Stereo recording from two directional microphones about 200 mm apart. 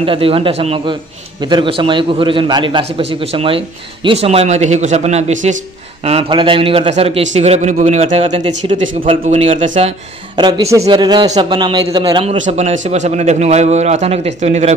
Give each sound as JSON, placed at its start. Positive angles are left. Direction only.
{"t": 0.0, "sound": "a man's voice", "side_deg": -25}